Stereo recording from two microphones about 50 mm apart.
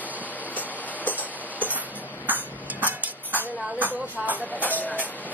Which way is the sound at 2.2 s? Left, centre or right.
Right.